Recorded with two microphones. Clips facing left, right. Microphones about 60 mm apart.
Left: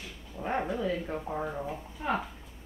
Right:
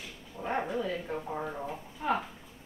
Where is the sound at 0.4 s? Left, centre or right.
Centre.